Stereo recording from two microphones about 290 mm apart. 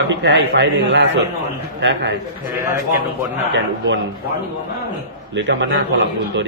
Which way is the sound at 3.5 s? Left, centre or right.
Right.